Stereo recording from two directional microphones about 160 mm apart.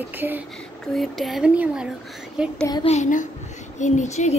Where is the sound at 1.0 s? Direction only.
Centre (ahead or behind).